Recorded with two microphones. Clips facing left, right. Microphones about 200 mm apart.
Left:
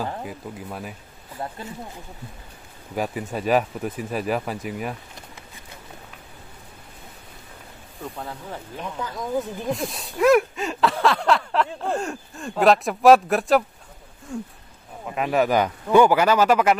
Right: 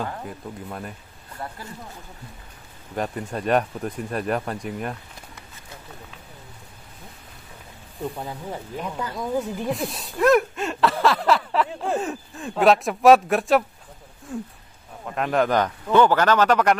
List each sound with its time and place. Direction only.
0.2 s speech: 5° left (ahead or behind)
3.0 s speech: 5° left (ahead or behind)
8.0 s speech: 15° right (ahead or behind); by 16.7 s 5° left (ahead or behind)